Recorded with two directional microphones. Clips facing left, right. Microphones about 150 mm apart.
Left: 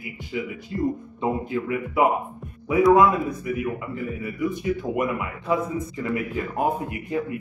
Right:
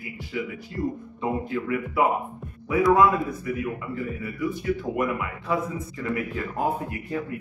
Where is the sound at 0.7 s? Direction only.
15° left (ahead or behind).